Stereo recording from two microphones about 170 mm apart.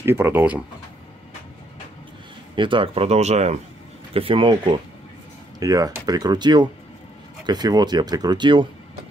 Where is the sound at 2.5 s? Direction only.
30° right (ahead or behind).